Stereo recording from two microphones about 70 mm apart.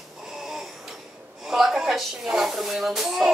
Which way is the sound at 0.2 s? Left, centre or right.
Centre.